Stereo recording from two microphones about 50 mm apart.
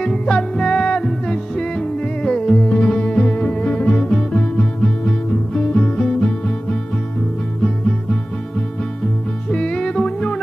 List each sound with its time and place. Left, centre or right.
0.1 s music: centre
9.5 s music: centre